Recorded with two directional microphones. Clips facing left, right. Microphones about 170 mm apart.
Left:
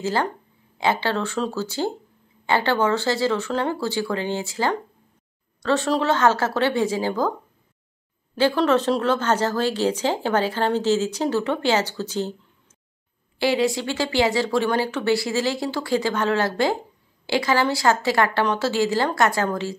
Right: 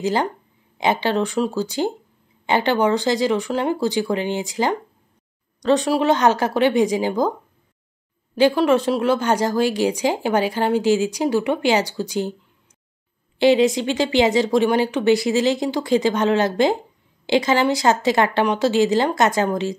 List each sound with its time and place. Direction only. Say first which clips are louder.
0.0 s speech: right 3 dB; 15° right (ahead or behind)
8.4 s speech: right 3 dB; 15° right (ahead or behind)
13.4 s speech: right 6 dB; 20° right (ahead or behind)